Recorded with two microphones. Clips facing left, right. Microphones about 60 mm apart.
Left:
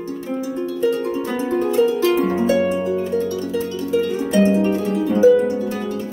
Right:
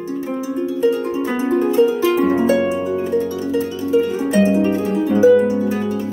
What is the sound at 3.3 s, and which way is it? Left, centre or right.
Harp, centre.